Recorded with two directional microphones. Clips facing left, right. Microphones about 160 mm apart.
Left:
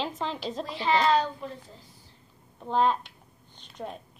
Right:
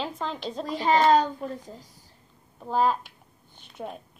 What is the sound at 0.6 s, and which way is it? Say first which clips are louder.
A child's voice: right 4 dB; 45° right (ahead or behind).